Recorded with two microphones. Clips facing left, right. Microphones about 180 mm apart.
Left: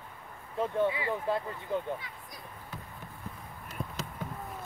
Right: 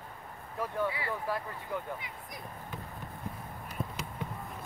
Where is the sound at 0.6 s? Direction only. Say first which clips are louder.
Left 4 dB; 25° left (ahead or behind).